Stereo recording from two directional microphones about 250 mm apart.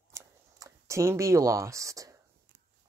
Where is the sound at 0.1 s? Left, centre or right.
Centre.